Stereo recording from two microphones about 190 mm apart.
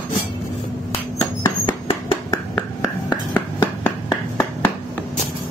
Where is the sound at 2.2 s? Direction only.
20° left (ahead or behind).